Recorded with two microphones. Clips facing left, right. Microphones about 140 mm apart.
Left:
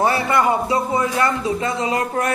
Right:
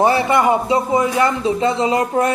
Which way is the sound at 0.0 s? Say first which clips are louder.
Right 3 dB; 25° right (ahead or behind).